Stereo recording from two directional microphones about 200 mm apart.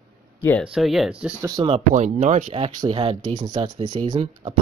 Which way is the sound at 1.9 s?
40° right (ahead or behind).